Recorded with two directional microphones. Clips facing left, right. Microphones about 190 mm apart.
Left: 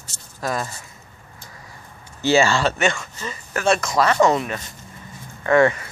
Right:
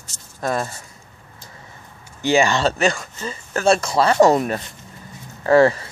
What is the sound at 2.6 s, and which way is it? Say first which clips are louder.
Speech: right 2 dB; 35° right (ahead or behind).